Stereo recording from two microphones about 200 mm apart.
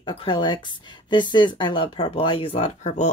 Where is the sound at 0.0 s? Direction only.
25° left (ahead or behind).